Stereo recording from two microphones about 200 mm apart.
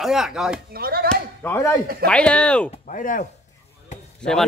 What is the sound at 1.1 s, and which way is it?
Chop, 10° left (ahead or behind).